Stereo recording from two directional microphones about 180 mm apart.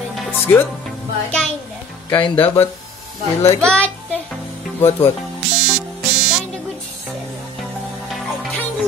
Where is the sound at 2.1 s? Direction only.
25° left (ahead or behind).